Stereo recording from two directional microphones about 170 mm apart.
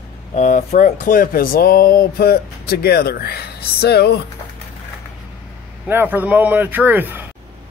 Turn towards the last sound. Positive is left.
turn(degrees=-10)  # may be behind; listen again after turning